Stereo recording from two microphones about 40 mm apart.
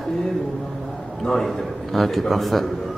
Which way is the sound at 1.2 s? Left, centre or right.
Centre.